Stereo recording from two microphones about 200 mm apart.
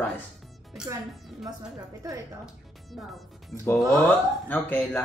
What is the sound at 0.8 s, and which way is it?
Speech, 5° right (ahead or behind).